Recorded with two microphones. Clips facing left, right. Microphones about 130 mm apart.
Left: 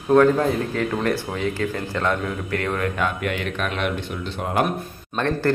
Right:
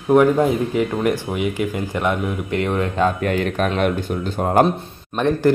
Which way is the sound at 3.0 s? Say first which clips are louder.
Right 6 dB; 35° right (ahead or behind).